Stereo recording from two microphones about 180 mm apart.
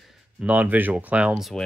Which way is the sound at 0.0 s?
5° right (ahead or behind).